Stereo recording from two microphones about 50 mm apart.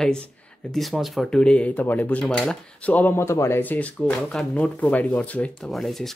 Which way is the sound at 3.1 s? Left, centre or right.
Left.